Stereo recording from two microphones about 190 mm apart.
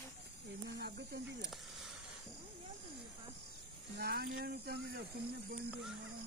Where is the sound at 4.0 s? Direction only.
55° right (ahead or behind).